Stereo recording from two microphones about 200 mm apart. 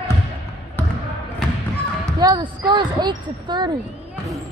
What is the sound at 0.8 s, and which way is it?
Basketball bounce, 10° left (ahead or behind).